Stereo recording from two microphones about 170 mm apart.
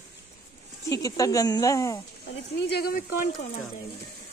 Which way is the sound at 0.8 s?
20° left (ahead or behind).